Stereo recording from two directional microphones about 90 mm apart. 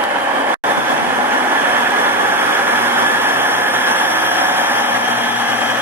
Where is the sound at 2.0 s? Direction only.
25° right (ahead or behind).